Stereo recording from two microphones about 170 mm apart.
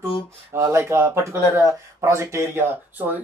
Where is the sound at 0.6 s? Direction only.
15° right (ahead or behind).